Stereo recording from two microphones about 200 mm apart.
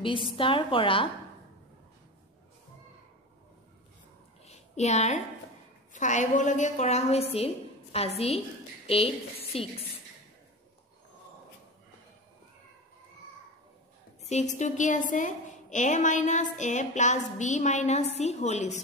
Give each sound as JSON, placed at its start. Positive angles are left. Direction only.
{"t": 0.0, "sound": "a woman's voice", "side_deg": 25}
{"t": 4.5, "sound": "a sound", "side_deg": 35}
{"t": 5.9, "sound": "a woman's voice", "side_deg": 40}
{"t": 14.2, "sound": "a woman's voice", "side_deg": 35}